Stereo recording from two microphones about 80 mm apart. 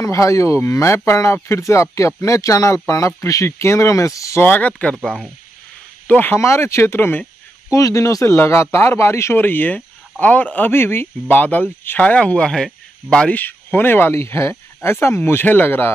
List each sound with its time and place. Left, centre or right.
0.0 s speech: left
4.4 s speech: centre
5.0 s speech: centre
6.0 s speech: left
6.4 s speech: left
7.7 s speech: left; by 13.4 s centre
13.4 s speech: left